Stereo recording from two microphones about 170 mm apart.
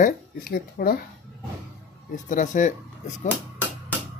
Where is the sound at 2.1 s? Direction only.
50° left (ahead or behind).